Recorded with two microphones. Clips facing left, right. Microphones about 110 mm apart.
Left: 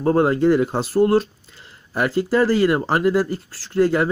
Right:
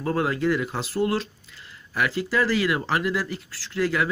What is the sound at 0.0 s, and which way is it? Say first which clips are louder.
Speech: left 7 dB; 40° left (ahead or behind).